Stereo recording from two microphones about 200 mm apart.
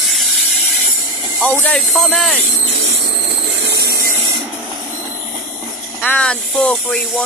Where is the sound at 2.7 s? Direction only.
55° right (ahead or behind).